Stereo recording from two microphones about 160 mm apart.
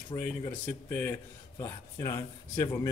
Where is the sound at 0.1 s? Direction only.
25° left (ahead or behind).